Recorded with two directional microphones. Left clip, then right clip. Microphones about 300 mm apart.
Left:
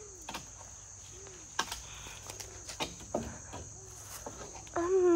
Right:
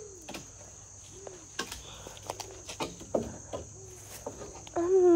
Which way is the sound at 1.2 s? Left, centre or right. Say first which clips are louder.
Left 2 dB; centre.